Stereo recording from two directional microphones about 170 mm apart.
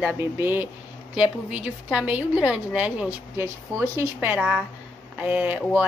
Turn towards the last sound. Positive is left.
turn(degrees=-10)  # may be behind; listen again after turning